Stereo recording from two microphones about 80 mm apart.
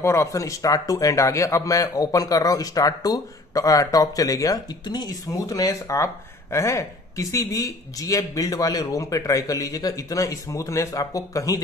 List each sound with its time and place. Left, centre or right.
0.0 s speech: left